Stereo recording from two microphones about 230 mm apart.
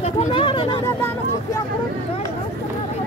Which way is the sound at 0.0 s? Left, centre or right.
Left.